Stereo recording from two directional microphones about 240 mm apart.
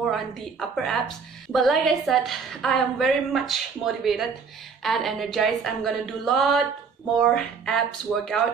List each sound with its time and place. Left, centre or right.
0.0 s a woman's voice: centre